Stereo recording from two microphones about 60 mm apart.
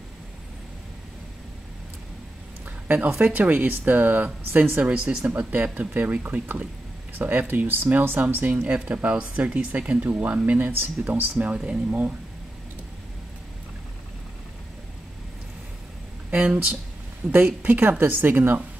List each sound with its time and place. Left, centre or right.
2.9 s speech: right
10.7 s speech: right
16.3 s speech: right